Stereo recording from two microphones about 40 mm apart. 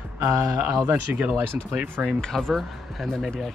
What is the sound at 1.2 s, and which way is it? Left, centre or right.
Speech, right.